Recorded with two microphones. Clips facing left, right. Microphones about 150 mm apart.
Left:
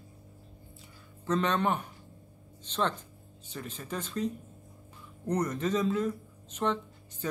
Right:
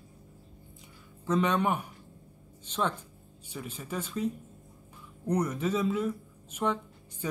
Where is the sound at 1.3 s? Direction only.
10° right (ahead or behind).